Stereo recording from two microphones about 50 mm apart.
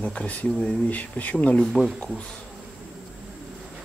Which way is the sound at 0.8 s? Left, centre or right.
Left.